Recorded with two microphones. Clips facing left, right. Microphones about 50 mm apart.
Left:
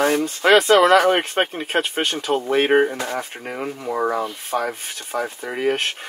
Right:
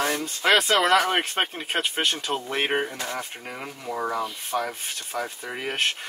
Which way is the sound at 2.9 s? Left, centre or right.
Left.